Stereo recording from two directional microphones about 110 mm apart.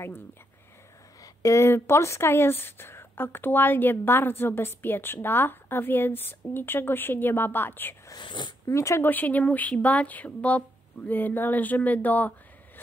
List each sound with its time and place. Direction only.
1.2 s speech: 30° left (ahead or behind)
8.1 s speech: 45° left (ahead or behind)
8.6 s speech: 25° left (ahead or behind)